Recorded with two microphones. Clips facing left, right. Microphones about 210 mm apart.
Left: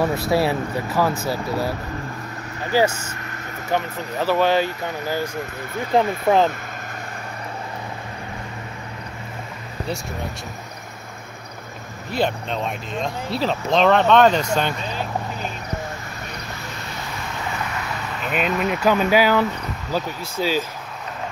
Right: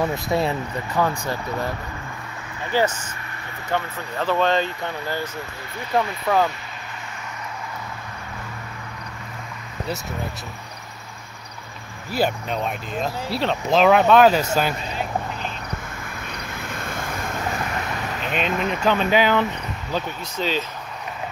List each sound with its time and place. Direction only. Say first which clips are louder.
0.3 s speech: left 3 dB; 5° left (ahead or behind)
5.9 s speech: left 3 dB; 25° left (ahead or behind)
12.1 s speech: even; 5° right (ahead or behind)
16.3 s vehicle: right 2 dB; 55° right (ahead or behind)
18.3 s speech: left 2 dB; 5° left (ahead or behind)